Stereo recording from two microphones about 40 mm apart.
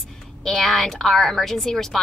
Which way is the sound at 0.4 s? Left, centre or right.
Centre.